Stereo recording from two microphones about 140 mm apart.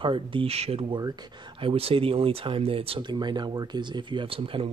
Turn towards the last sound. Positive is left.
turn(degrees=-40)  # may be behind; listen again after turning